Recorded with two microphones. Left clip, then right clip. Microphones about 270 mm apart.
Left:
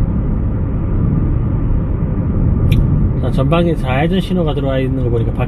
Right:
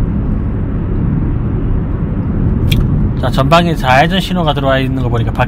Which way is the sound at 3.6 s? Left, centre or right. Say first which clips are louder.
Right 7 dB; right.